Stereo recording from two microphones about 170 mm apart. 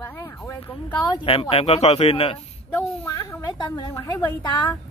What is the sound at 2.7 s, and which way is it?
A woman's voice, 15° left (ahead or behind).